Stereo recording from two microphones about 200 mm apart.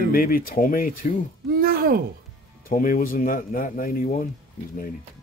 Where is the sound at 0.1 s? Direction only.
45° left (ahead or behind).